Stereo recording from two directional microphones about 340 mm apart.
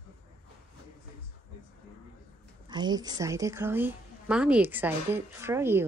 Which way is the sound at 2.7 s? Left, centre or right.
Centre.